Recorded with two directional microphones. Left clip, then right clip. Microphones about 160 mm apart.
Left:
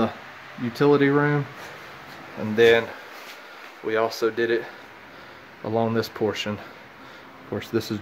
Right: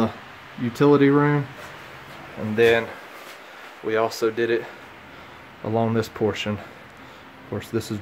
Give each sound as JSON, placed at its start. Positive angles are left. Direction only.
{"t": 0.7, "sound": "speech", "side_deg": 0}
{"t": 2.5, "sound": "speech", "side_deg": 5}
{"t": 3.8, "sound": "speech", "side_deg": -10}
{"t": 7.5, "sound": "speech", "side_deg": 10}